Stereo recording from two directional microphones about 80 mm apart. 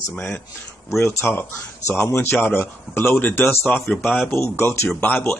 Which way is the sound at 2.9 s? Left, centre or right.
Left.